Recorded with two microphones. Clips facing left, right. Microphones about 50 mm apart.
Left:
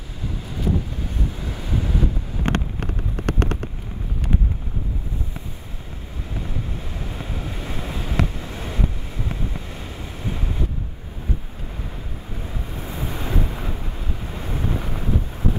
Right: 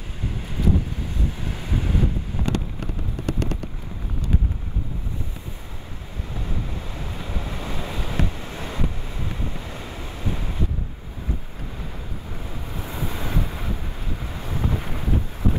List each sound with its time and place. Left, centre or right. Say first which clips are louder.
1.6 s vehicle: even; right
2.4 s vehicle: left 4 dB; left
7.2 s waves: even; right
8.4 s vehicle: left 1 dB; right
12.9 s wind noise: left 1 dB; left